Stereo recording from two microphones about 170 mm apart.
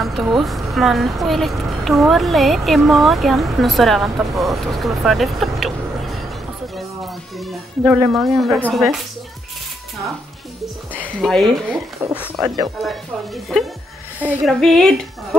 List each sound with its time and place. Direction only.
0.0 s speech: 5° right (ahead or behind)
7.3 s speech: centre (ahead or behind)
11.0 s speech: centre (ahead or behind)
12.0 s speech: 10° right (ahead or behind)
12.8 s speech: centre (ahead or behind)